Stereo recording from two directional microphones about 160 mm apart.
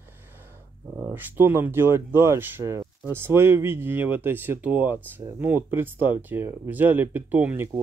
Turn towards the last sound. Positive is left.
turn(degrees=-10)  # may be behind; listen again after turning